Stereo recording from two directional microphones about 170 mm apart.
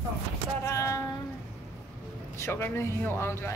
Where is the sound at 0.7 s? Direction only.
15° left (ahead or behind).